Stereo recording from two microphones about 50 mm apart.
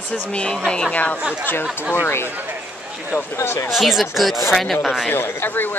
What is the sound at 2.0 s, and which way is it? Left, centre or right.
Speech, left.